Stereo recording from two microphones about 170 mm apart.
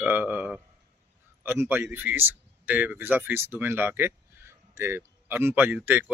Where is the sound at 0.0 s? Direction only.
10° right (ahead or behind).